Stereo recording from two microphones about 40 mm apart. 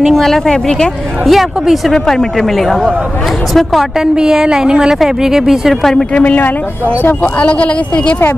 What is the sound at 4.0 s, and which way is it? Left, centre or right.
A woman's voice, centre.